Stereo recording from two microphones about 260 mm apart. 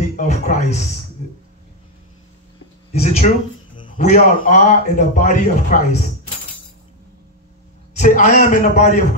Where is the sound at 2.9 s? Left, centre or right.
Left.